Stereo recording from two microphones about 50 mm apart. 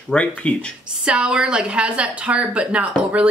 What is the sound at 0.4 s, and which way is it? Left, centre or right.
Speech, left.